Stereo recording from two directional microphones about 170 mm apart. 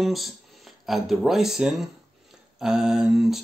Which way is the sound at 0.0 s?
Centre (ahead or behind).